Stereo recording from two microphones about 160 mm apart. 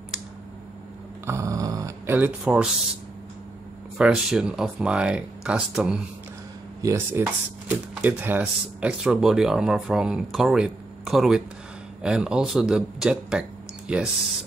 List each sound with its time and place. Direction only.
1.2 s a sound: 20° right (ahead or behind)
4.0 s speech: 5° right (ahead or behind)
6.8 s speech: 20° right (ahead or behind)